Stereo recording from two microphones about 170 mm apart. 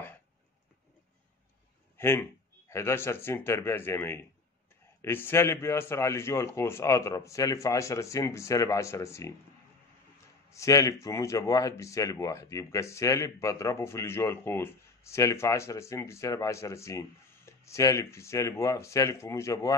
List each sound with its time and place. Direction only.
2.0 s speech: 15° left (ahead or behind)
10.5 s speech: 20° left (ahead or behind)